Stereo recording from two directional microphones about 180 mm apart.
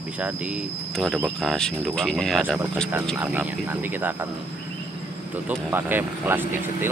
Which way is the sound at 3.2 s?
10° right (ahead or behind).